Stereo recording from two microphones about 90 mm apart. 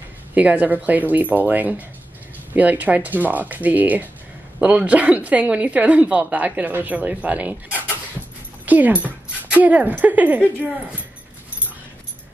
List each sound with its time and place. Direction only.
0.3 s a woman's voice: 15° right (ahead or behind)